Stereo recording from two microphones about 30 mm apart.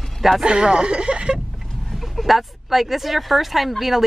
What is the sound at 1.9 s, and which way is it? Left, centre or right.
Speech, centre.